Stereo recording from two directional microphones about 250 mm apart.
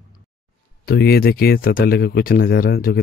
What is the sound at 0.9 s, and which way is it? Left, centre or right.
Speech, left.